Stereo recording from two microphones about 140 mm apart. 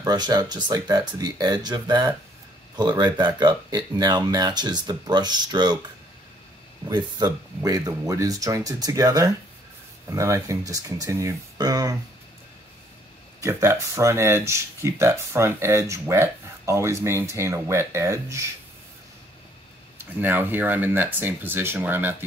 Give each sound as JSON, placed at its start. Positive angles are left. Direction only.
{"t": 0.0, "sound": "speech", "side_deg": -30}
{"t": 6.9, "sound": "speech", "side_deg": -30}
{"t": 13.4, "sound": "speech", "side_deg": -20}
{"t": 20.0, "sound": "speech", "side_deg": -15}